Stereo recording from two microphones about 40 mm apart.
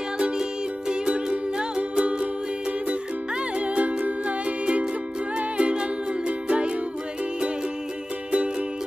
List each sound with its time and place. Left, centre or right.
0.2 s music: centre
3.5 s music: right